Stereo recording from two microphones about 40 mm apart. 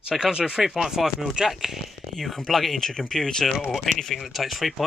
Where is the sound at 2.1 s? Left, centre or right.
Centre.